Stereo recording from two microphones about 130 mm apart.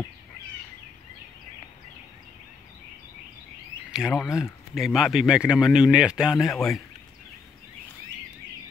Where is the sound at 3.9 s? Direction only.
Centre (ahead or behind).